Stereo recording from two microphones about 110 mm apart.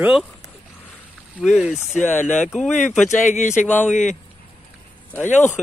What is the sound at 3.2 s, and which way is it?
Speech, 90° left.